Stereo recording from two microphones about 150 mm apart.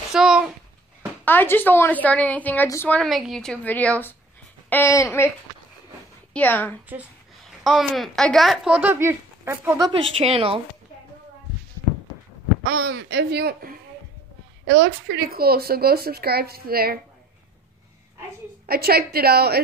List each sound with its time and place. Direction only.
0.1 s a sound: 5° right (ahead or behind)
1.2 s a woman's voice: 15° left (ahead or behind)
3.0 s a woman's voice: centre (ahead or behind); by 5.3 s 20° left (ahead or behind)
6.3 s a woman's voice: 10° left (ahead or behind)
7.6 s speech: centre (ahead or behind); by 10.0 s 25° right (ahead or behind)
10.2 s speech: 40° right (ahead or behind)
12.6 s speech: 90° right
18.7 s speech: 90° right